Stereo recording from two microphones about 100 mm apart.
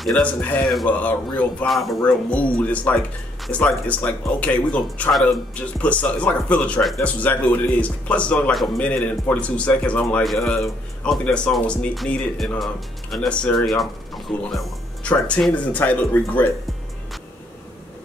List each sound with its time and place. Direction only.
0.0 s speech: 10° left (ahead or behind)
1.7 s speech: centre (ahead or behind)
2.0 s speech: 15° left (ahead or behind)
5.1 s speech: centre (ahead or behind)
5.6 s speech: 15° left (ahead or behind)
15.0 s speech: 10° left (ahead or behind)